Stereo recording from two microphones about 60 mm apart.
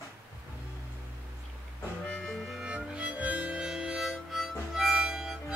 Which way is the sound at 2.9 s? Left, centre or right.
Right.